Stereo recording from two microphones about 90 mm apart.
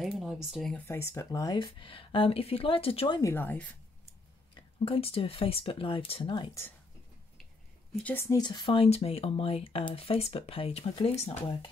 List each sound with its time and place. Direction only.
0.0 s speech: centre (ahead or behind)
0.8 s speech: 35° left (ahead or behind)
1.5 s a woman's voice: 65° left (ahead or behind); by 3.2 s 90° left
3.3 s speech: 20° left (ahead or behind)
4.6 s speech: 85° left; by 6.5 s 65° left (ahead or behind)
8.0 s speech: 20° left (ahead or behind)
8.4 s speech: 55° left (ahead or behind)
8.7 s speech: 90° left; by 11.5 s 75° left (ahead or behind)